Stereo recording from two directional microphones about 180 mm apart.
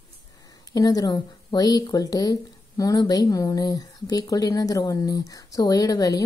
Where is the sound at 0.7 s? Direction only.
20° left (ahead or behind).